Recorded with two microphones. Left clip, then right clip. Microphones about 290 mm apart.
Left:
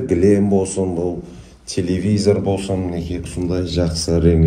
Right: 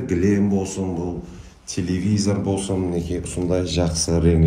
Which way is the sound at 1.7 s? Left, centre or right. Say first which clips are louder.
Left 4 dB; left.